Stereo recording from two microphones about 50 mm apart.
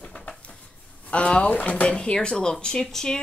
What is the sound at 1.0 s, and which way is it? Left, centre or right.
Speech, left.